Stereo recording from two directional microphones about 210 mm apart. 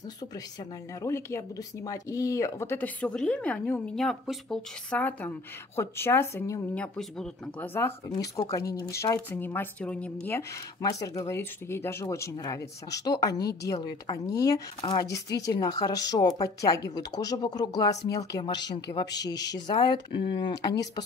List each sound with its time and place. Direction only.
1.0 s speech: 15° left (ahead or behind)